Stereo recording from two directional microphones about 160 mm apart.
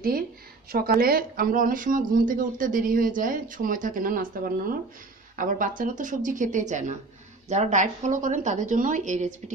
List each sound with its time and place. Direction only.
0.7 s a woman's voice: 70° right (ahead or behind); by 9.3 s 50° right (ahead or behind)